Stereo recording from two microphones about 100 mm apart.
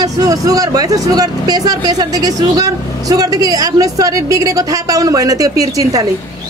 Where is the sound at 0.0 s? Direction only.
40° right (ahead or behind).